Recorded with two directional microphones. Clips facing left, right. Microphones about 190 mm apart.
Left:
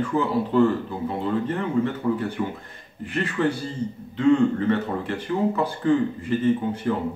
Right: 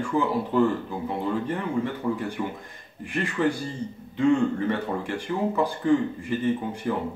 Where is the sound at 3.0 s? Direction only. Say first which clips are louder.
Left 1 dB; 15° right (ahead or behind).